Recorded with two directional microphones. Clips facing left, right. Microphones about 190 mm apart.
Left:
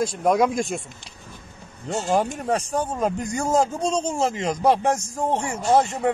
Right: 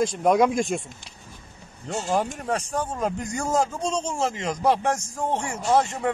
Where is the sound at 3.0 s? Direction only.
30° left (ahead or behind).